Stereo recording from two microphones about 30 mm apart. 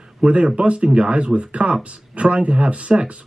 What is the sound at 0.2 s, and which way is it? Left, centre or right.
Speech, right.